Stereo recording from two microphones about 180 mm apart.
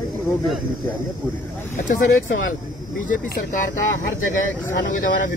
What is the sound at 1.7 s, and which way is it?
Speech, 55° left (ahead or behind).